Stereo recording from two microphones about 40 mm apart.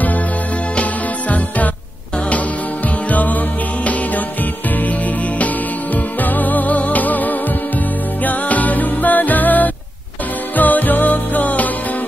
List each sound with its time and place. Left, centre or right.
3.1 s music: left
6.2 s music: left